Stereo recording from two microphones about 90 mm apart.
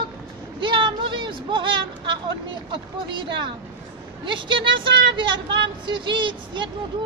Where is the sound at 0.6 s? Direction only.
65° right (ahead or behind).